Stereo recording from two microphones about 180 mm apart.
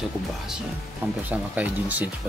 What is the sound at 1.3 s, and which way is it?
Speech, 10° right (ahead or behind).